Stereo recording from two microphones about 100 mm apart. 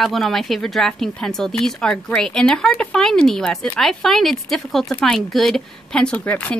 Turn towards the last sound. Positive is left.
turn(degrees=15)  # may be behind; listen again after turning